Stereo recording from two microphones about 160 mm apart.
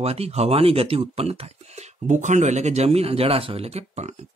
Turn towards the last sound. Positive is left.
turn(degrees=-40)  # may be behind; listen again after turning